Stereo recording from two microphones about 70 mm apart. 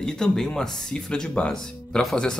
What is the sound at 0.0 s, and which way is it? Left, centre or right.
Speech, centre.